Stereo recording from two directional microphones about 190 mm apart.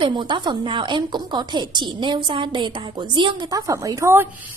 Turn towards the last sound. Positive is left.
turn(degrees=-10)  # may be behind; listen again after turning